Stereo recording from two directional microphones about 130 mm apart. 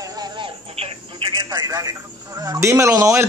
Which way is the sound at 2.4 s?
25° right (ahead or behind).